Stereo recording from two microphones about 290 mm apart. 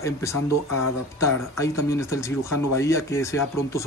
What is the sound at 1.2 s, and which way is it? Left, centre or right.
Speech, centre.